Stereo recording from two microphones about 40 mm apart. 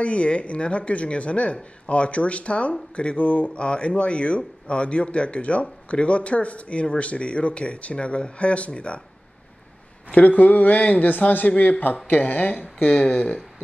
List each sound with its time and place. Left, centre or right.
0.0 s speech: left
10.1 s speech: left